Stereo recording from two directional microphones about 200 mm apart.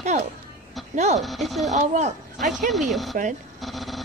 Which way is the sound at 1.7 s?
35° right (ahead or behind).